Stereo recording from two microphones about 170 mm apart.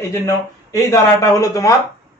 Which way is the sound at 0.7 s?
20° left (ahead or behind).